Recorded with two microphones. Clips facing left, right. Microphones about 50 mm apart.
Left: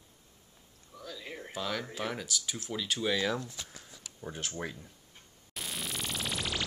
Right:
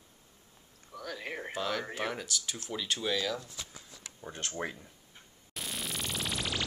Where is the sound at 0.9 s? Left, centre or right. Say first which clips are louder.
Right 4 dB; right.